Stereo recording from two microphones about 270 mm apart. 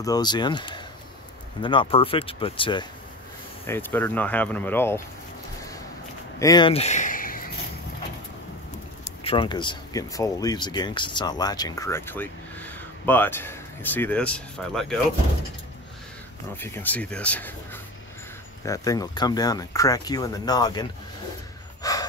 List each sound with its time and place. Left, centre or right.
0.0 s speech: centre
6.4 s speech: centre
9.0 s speech: left; by 15.0 s centre
16.5 s speech: centre
18.6 s speech: centre
21.8 s gasp: centre